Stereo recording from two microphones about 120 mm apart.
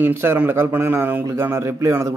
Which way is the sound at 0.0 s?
20° right (ahead or behind).